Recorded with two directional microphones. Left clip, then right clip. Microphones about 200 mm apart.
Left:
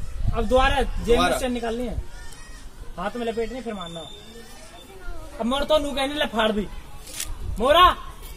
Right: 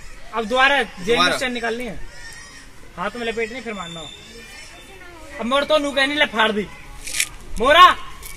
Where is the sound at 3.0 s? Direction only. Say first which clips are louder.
Right 3 dB; 40° right (ahead or behind).